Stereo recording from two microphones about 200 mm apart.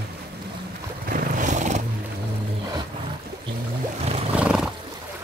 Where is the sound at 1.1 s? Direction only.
40° right (ahead or behind).